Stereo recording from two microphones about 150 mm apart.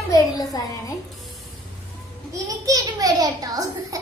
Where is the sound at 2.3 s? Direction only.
25° right (ahead or behind).